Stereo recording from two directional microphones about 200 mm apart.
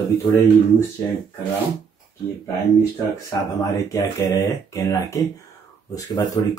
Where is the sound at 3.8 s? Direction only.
15° left (ahead or behind).